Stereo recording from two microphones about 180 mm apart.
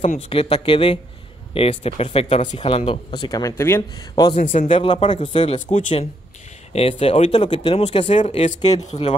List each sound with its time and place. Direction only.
0.3 s speech: 30° left (ahead or behind); by 3.8 s 15° left (ahead or behind)
4.1 s a man's voice: 30° left (ahead or behind)
4.4 s speech: 45° left (ahead or behind)